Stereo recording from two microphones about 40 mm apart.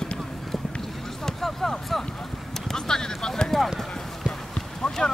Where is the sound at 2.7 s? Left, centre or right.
Centre.